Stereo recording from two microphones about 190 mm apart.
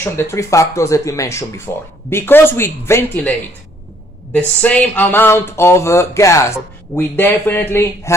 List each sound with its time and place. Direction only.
0.0 s speech: 15° left (ahead or behind)